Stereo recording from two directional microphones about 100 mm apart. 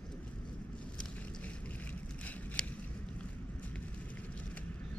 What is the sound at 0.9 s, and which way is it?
Boat, 15° left (ahead or behind).